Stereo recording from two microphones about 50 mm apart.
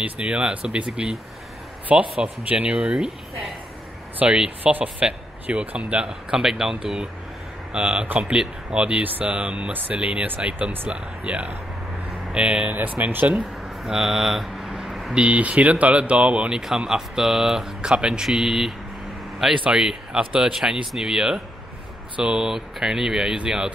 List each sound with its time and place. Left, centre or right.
0.0 s speech: right
2.2 s speech: right
2.7 s speech: centre
4.2 s speech: centre
6.0 s speech: centre
7.7 s speech: right
9.7 s speech: right
9.9 s speech: right
12.7 s speech: right
13.8 s a sound: centre
15.1 s speech: right; by 18.7 s centre
19.7 s speech: centre